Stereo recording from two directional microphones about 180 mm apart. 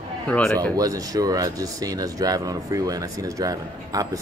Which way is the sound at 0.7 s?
20° right (ahead or behind).